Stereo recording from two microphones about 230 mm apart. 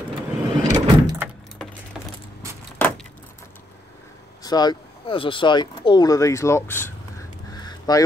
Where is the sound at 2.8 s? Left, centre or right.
Centre.